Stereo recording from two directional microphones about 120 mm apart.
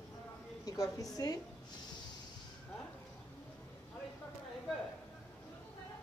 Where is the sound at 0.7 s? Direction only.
30° left (ahead or behind).